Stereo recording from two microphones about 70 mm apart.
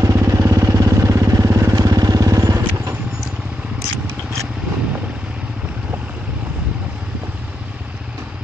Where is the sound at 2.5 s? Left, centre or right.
Right.